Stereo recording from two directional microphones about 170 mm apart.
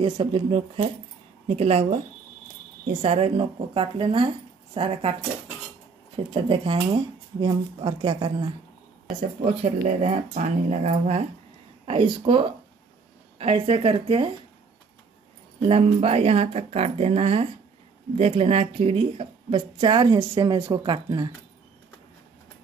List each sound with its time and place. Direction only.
0.0 s speech: 30° right (ahead or behind)
6.3 s speech: 30° right (ahead or behind)
9.4 s speech: 40° right (ahead or behind)
15.7 s speech: 35° right (ahead or behind)